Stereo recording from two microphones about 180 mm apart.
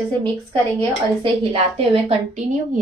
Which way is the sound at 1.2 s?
30° right (ahead or behind).